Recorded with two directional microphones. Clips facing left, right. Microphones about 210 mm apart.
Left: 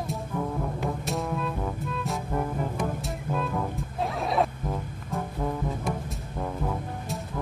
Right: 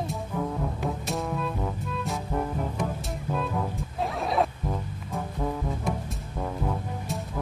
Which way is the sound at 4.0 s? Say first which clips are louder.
Even; centre (ahead or behind).